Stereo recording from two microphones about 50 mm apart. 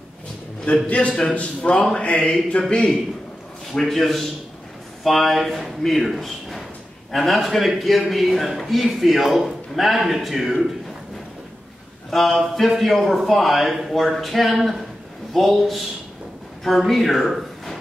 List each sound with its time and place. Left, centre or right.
0.8 s a man's voice: left
3.7 s a man's voice: centre
12.1 s a man's voice: centre